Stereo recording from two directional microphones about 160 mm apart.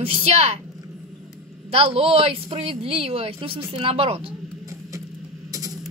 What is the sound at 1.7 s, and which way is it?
A woman's voice, 40° right (ahead or behind).